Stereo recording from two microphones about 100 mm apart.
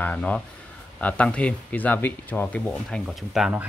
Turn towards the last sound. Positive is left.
turn(degrees=0)  # may be behind; listen again after turning